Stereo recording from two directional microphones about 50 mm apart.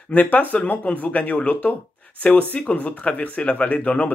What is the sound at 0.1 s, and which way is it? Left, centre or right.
Speech, left.